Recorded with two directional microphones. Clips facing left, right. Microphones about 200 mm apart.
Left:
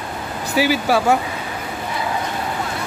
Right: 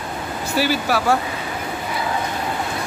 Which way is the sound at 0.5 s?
15° left (ahead or behind).